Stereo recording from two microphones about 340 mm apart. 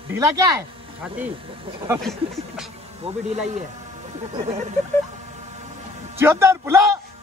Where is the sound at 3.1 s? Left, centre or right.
Centre.